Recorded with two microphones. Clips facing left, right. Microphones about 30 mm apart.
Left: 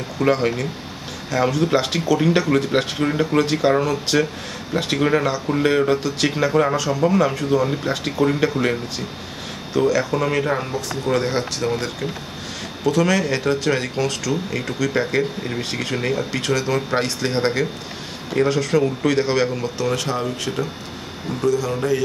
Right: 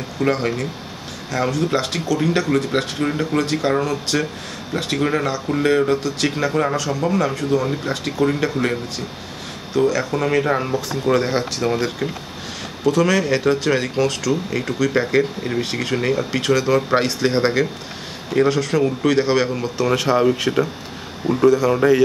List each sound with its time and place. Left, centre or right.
0.2 s speech: centre
9.8 s speech: centre